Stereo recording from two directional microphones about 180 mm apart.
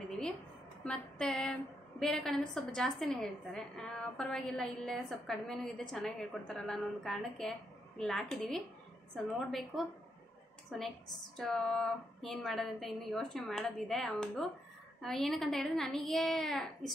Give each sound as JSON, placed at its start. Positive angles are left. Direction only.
{"t": 0.8, "sound": "a woman's voice", "side_deg": 5}